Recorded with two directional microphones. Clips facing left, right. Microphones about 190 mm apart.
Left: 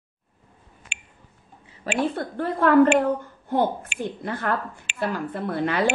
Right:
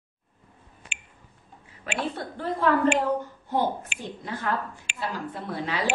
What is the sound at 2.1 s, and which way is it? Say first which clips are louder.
A woman's voice: left 4 dB; 55° left (ahead or behind).